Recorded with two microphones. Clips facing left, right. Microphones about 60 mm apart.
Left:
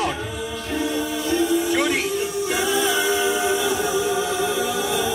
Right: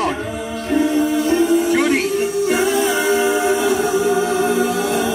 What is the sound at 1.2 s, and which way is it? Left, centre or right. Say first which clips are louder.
Music: right 3 dB; right.